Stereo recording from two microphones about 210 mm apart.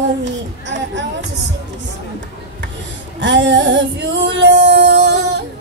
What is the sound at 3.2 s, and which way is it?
Music, 60° right (ahead or behind).